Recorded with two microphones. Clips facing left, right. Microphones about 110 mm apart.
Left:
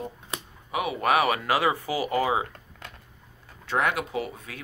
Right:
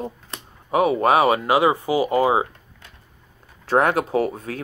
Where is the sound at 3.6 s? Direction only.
40° right (ahead or behind).